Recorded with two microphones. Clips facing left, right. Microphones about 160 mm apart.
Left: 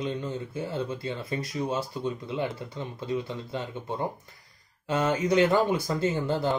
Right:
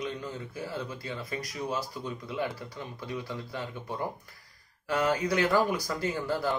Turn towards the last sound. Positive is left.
turn(degrees=25)  # may be behind; listen again after turning